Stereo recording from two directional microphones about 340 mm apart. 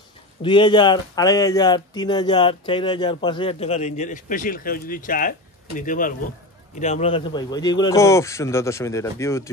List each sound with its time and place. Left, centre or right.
0.4 s speech: centre